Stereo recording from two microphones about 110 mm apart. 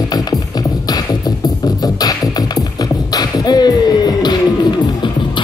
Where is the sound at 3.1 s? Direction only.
40° left (ahead or behind).